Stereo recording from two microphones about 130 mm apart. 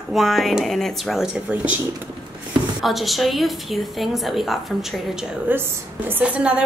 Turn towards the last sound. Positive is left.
turn(degrees=-10)  # may be behind; listen again after turning